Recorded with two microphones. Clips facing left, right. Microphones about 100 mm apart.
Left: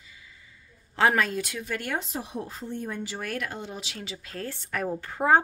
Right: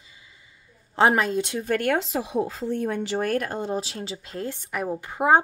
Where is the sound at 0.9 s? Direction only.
25° right (ahead or behind).